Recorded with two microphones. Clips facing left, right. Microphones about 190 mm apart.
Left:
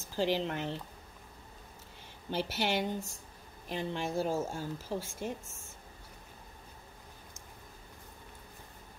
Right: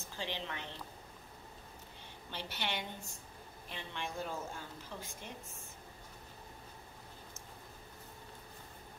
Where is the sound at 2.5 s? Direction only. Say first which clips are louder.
Left 7 dB; 40° left (ahead or behind).